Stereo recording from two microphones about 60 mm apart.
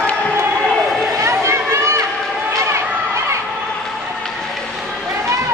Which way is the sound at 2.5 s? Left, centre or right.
Right.